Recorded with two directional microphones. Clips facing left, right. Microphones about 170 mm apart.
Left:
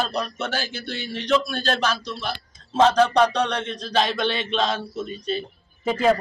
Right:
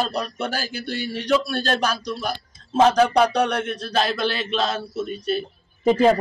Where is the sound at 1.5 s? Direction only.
5° right (ahead or behind).